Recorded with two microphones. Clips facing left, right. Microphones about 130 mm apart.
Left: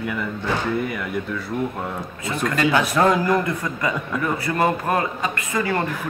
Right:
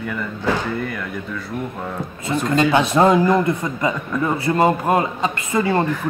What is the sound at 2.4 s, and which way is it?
Speech, 25° right (ahead or behind).